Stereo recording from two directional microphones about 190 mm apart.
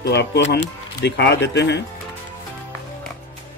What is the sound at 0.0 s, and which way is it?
Speech, 60° left (ahead or behind).